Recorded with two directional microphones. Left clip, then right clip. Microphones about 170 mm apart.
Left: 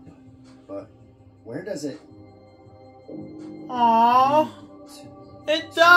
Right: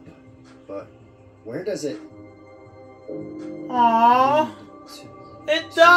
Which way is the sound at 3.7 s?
30° left (ahead or behind).